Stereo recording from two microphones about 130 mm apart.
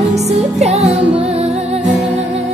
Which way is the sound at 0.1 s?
55° right (ahead or behind).